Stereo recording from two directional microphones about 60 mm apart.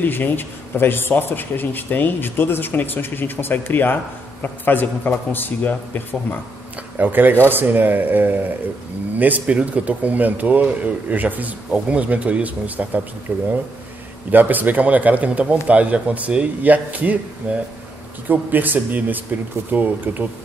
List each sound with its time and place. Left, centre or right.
0.0 s a man's voice: left
7.0 s speech: right